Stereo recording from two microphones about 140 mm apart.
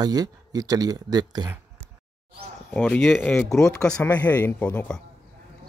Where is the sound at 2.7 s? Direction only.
15° left (ahead or behind).